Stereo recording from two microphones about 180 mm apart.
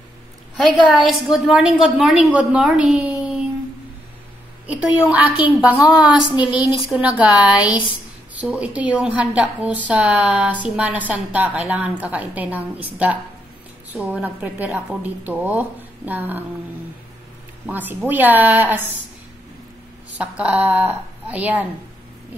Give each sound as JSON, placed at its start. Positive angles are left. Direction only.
{"t": 0.6, "sound": "a woman's voice", "side_deg": 0}
{"t": 4.6, "sound": "a woman's voice", "side_deg": -5}
{"t": 6.2, "sound": "a woman's voice", "side_deg": 25}
{"t": 6.9, "sound": "a woman's voice", "side_deg": -5}
{"t": 17.6, "sound": "a woman's voice", "side_deg": -10}
{"t": 20.2, "sound": "a woman's voice", "side_deg": -5}